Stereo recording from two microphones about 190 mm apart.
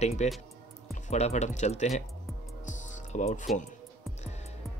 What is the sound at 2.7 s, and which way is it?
Music, 40° left (ahead or behind).